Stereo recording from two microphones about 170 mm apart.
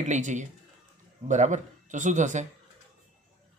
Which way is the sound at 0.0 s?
45° right (ahead or behind).